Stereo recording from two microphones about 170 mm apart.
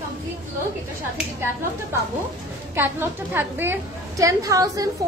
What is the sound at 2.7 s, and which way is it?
A woman's voice, 15° right (ahead or behind).